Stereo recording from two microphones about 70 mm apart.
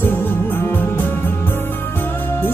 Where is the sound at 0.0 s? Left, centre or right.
Left.